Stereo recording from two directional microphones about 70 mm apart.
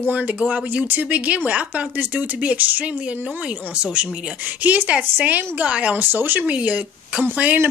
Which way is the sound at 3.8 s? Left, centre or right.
Centre.